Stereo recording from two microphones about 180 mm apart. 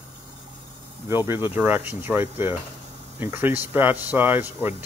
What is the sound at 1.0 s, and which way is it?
Speech, 15° right (ahead or behind).